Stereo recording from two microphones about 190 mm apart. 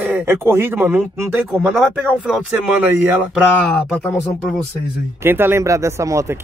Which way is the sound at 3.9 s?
5° left (ahead or behind).